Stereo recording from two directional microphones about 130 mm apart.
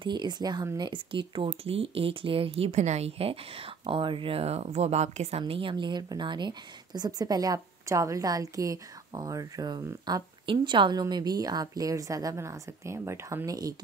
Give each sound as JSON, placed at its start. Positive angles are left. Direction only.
{"t": 0.0, "sound": "speech", "side_deg": -35}
{"t": 5.5, "sound": "speech", "side_deg": -40}